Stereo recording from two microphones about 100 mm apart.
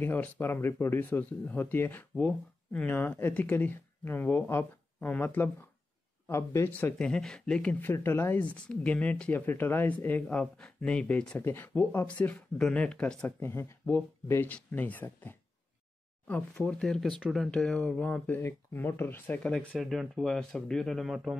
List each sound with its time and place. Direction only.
0.0 s speech: 20° left (ahead or behind)
7.0 s speech: 5° left (ahead or behind)
7.8 s speech: 25° left (ahead or behind)
13.4 s speech: 25° left (ahead or behind)
16.5 s speech: 5° left (ahead or behind)
19.7 s speech: centre (ahead or behind)